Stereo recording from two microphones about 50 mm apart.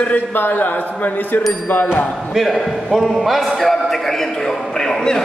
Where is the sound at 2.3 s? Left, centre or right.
Centre.